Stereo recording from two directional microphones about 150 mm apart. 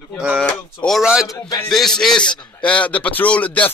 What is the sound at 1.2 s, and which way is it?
Speech, 25° left (ahead or behind).